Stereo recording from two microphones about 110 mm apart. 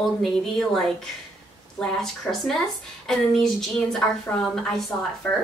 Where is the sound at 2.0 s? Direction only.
5° left (ahead or behind).